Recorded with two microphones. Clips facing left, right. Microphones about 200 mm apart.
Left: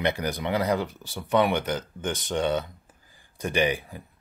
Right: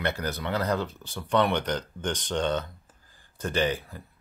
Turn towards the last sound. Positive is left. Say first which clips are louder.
# left 2 dB
turn(degrees=15)  # may be behind; listen again after turning